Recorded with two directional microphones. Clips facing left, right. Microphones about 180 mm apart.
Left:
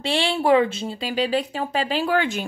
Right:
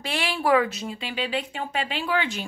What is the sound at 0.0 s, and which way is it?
A woman's voice, 30° left (ahead or behind).